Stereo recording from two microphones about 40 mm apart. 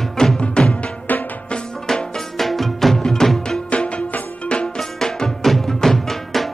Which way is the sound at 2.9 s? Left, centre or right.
Centre.